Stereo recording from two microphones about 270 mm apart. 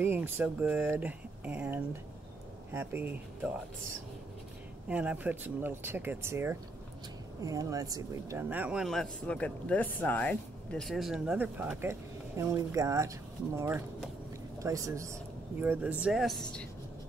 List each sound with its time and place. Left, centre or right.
0.0 s speech: centre
4.8 s speech: centre